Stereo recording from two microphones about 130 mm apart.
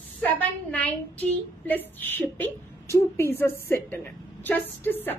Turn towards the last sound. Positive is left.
turn(degrees=15)  # may be behind; listen again after turning